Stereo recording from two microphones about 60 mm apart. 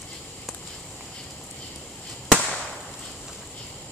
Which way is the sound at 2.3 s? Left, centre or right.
Centre.